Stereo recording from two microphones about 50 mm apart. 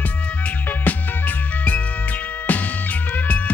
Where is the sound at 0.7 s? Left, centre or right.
Left.